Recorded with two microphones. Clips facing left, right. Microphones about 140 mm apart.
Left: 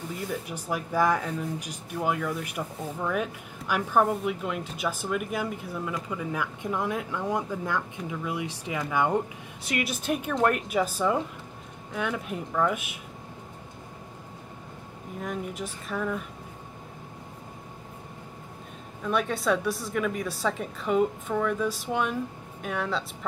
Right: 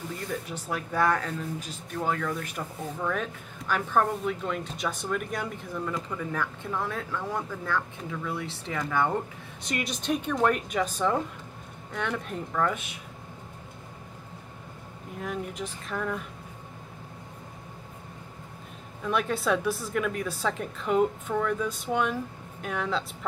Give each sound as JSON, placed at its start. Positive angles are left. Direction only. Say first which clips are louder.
{"t": 0.3, "sound": "a woman's voice", "louder": "left 1 dB", "side_deg": 10}
{"t": 15.1, "sound": "a woman's voice", "louder": "even", "side_deg": 0}
{"t": 19.0, "sound": "a woman's voice", "louder": "left 1 dB", "side_deg": 0}